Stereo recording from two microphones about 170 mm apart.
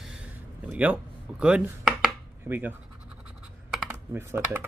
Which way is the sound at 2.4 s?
10° right (ahead or behind).